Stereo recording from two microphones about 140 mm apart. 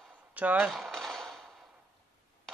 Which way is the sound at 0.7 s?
Centre (ahead or behind).